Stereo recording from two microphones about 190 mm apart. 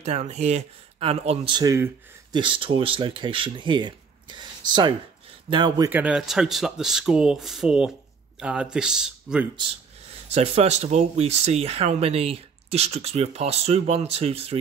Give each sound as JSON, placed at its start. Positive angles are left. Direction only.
{"t": 0.0, "sound": "speech", "side_deg": -35}
{"t": 5.9, "sound": "speech", "side_deg": -10}
{"t": 10.3, "sound": "speech", "side_deg": -35}